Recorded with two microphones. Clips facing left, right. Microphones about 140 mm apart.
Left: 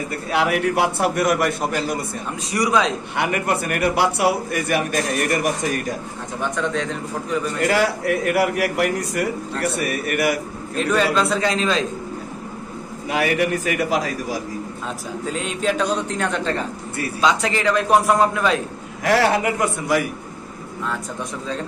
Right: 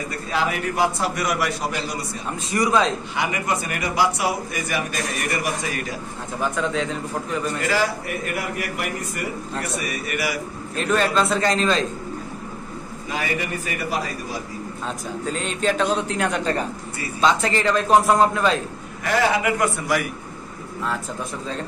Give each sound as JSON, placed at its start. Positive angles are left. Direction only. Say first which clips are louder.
{"t": 0.3, "sound": "a man's voice", "louder": "left 5 dB", "side_deg": 70}
{"t": 2.5, "sound": "a man's voice", "louder": "even", "side_deg": 0}
{"t": 3.2, "sound": "a man's voice", "louder": "left 4 dB", "side_deg": 60}
{"t": 6.4, "sound": "a man's voice", "louder": "even", "side_deg": -5}
{"t": 7.6, "sound": "a man's voice", "louder": "left 6 dB", "side_deg": 65}
{"t": 9.8, "sound": "a man's voice", "louder": "left 5 dB", "side_deg": 55}
{"t": 10.8, "sound": "a man's voice", "louder": "left 1 dB", "side_deg": 0}
{"t": 13.1, "sound": "a man's voice", "louder": "left 7 dB", "side_deg": 75}
{"t": 15.3, "sound": "a man's voice", "louder": "left 1 dB", "side_deg": 0}
{"t": 19.0, "sound": "a man's voice", "louder": "left 3 dB", "side_deg": 70}
{"t": 19.4, "sound": "a man's voice", "louder": "even", "side_deg": 25}